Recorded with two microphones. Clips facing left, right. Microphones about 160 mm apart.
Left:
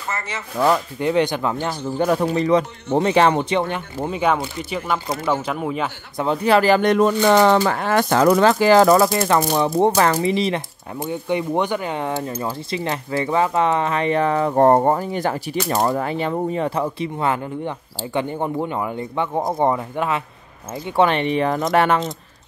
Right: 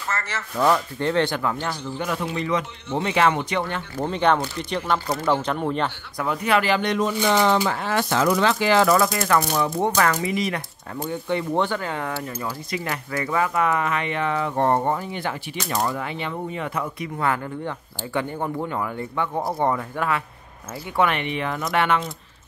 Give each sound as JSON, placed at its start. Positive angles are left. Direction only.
{"t": 0.1, "sound": "speech", "side_deg": 15}
{"t": 1.9, "sound": "speech", "side_deg": 40}
{"t": 3.5, "sound": "speech", "side_deg": 20}
{"t": 6.1, "sound": "speech", "side_deg": 30}
{"t": 20.9, "sound": "speech", "side_deg": 30}